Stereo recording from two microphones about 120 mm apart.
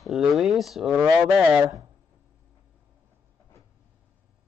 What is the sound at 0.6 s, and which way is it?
Speech, centre (ahead or behind).